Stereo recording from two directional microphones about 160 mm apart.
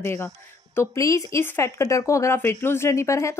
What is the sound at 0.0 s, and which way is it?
A woman's voice, 15° left (ahead or behind).